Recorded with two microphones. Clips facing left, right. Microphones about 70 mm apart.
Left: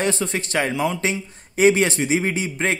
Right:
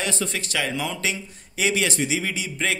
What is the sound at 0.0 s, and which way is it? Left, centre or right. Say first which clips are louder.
A man's voice: left 5 dB; left.